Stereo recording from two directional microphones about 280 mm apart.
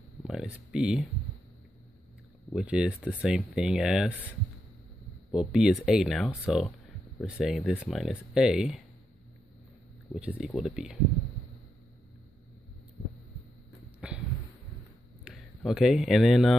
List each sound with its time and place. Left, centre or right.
0.2 s speech: centre
2.5 s speech: centre
5.3 s speech: centre
10.1 s speech: centre
14.0 s a sound: centre
15.2 s speech: centre